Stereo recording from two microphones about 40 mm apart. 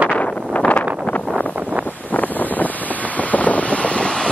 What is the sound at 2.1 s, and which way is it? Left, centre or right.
Wind noise, left.